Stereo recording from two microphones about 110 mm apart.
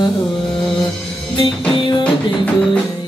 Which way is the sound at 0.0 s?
45° left (ahead or behind).